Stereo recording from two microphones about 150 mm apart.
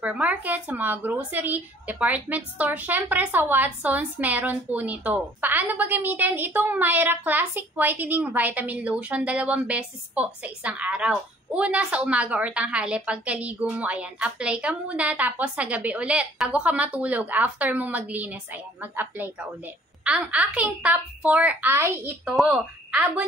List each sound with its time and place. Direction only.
0.0 s speech: 10° right (ahead or behind)
22.2 s speech: 5° right (ahead or behind)